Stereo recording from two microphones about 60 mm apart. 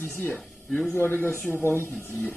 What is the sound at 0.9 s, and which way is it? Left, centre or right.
Speech, left.